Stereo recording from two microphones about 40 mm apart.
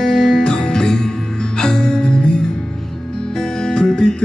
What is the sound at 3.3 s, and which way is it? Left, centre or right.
Music, centre.